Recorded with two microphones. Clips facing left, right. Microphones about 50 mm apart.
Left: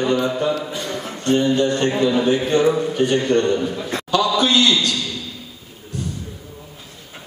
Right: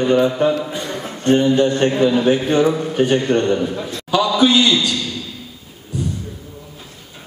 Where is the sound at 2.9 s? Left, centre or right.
Right.